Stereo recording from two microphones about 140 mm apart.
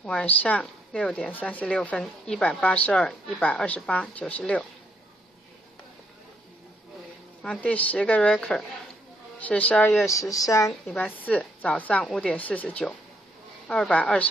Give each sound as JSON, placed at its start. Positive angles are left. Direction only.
{"t": 0.0, "sound": "speech", "side_deg": 5}
{"t": 7.4, "sound": "speech", "side_deg": 5}
{"t": 10.0, "sound": "speech", "side_deg": 25}
{"t": 10.7, "sound": "speech", "side_deg": 0}